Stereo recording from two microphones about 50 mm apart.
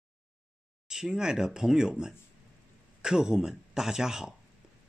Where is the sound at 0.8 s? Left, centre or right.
Centre.